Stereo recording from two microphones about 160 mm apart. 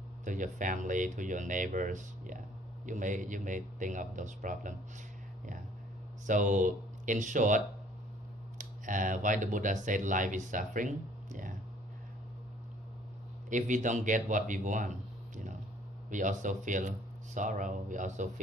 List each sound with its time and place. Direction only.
0.2 s speech: 55° right (ahead or behind)
6.2 s speech: 50° right (ahead or behind)
13.5 s speech: 50° right (ahead or behind)